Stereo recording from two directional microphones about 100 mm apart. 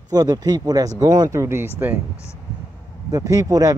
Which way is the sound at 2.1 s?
30° left (ahead or behind).